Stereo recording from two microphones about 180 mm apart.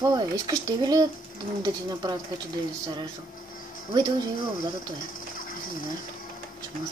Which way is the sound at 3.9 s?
20° right (ahead or behind).